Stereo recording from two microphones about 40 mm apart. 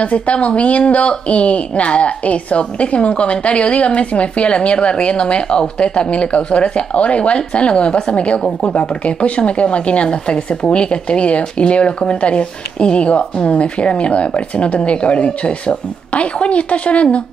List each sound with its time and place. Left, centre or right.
0.0 s speech: left